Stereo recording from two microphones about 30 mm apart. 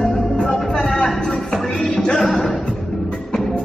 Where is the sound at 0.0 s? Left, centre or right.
Centre.